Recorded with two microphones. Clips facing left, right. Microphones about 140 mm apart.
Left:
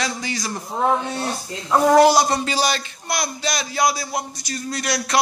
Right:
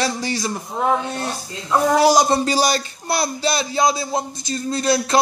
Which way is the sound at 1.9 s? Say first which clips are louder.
Left 1 dB; 10° right (ahead or behind).